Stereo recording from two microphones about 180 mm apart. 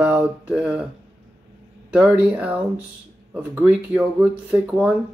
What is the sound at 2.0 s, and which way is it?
Speech, 10° right (ahead or behind).